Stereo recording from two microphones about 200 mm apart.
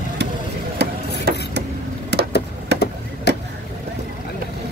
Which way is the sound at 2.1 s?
55° right (ahead or behind).